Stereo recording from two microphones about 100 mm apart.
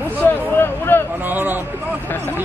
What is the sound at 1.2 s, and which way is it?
Speech, 20° right (ahead or behind).